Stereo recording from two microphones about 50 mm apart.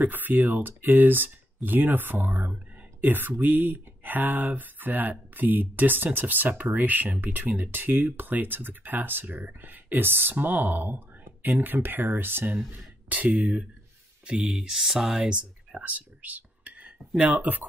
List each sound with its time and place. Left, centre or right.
0.0 s speech: right
12.7 s speech: right
14.2 s speech: centre
15.2 s speech: centre
15.8 s whispering: right
17.2 s speech: right